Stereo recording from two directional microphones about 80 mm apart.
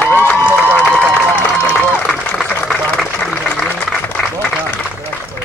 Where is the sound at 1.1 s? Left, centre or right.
Left.